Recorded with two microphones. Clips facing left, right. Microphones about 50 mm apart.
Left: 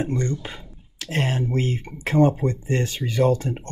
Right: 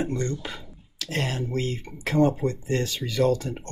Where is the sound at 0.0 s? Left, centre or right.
Left.